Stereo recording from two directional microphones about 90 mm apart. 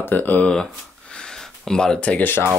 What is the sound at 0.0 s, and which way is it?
Speech, 20° left (ahead or behind).